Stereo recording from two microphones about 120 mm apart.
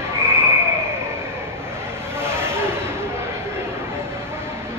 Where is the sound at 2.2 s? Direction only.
20° right (ahead or behind).